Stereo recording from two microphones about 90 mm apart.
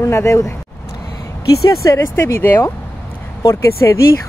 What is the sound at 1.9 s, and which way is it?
Speech, 30° left (ahead or behind).